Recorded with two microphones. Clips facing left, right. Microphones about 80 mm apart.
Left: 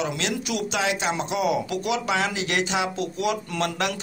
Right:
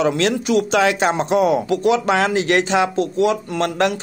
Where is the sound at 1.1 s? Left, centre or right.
Right.